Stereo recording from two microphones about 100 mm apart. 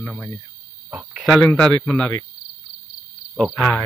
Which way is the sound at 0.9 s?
10° right (ahead or behind).